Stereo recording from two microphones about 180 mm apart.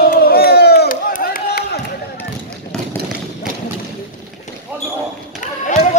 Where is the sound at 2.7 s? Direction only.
5° left (ahead or behind).